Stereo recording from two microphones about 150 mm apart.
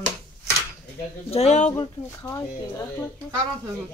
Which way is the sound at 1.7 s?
20° left (ahead or behind).